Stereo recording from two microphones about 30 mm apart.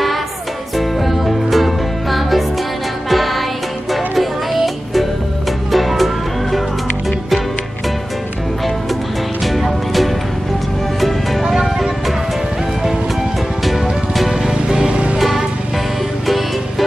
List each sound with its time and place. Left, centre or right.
0.7 s music: centre
9.4 s music: centre
14.3 s music: centre
14.9 s music: right
15.1 s music: centre